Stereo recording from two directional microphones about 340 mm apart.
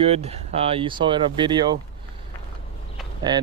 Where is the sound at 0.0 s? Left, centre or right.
Centre.